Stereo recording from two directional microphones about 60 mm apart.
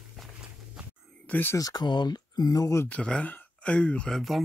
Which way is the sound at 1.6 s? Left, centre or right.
Left.